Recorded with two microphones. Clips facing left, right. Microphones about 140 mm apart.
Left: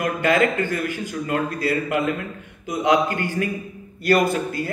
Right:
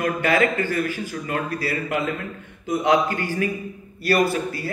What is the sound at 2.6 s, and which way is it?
Speech, 15° left (ahead or behind).